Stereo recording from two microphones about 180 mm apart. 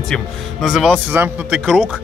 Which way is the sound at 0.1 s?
Centre (ahead or behind).